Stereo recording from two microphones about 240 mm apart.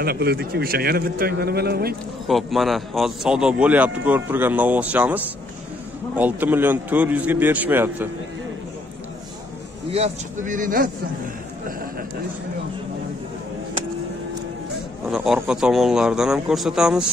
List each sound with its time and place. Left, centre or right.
0.0 s a man's voice: right
2.2 s a man's voice: centre
9.8 s a man's voice: right
15.0 s speech: centre